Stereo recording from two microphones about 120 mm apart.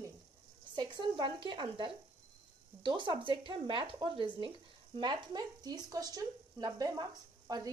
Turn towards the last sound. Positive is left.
turn(degrees=-35)  # may be behind; listen again after turning